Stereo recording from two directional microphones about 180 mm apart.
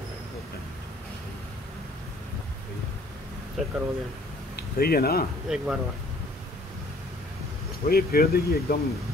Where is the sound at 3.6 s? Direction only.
Centre (ahead or behind).